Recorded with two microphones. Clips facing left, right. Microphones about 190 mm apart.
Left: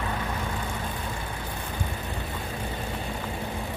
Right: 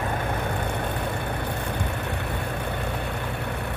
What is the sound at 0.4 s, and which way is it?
Vehicle, 60° right (ahead or behind).